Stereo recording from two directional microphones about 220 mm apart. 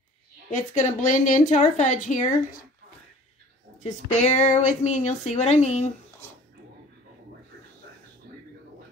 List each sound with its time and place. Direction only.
0.5 s speech: 35° left (ahead or behind)
4.2 s speech: 30° left (ahead or behind)